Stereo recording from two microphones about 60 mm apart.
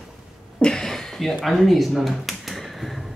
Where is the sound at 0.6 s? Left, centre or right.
Centre.